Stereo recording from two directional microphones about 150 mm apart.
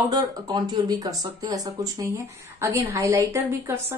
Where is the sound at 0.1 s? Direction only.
25° right (ahead or behind).